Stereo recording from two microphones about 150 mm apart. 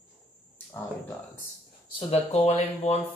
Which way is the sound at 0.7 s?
10° left (ahead or behind).